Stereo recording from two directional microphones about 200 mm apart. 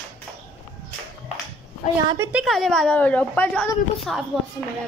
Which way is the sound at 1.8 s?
45° left (ahead or behind).